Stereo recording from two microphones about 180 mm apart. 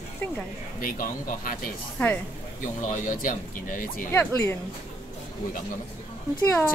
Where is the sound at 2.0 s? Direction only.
10° left (ahead or behind).